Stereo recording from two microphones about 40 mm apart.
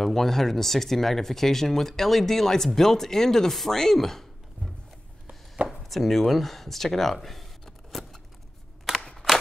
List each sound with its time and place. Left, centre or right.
0.0 s speech: centre
5.7 s speech: centre
8.9 s single-lens reflex camera: left